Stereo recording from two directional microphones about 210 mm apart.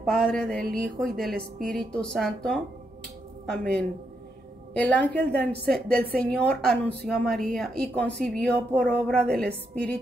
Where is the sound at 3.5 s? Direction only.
50° right (ahead or behind).